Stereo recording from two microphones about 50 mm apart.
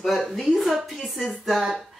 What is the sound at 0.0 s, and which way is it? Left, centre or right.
Speech, centre.